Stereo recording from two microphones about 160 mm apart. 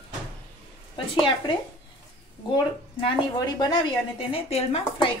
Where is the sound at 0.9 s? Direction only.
30° left (ahead or behind).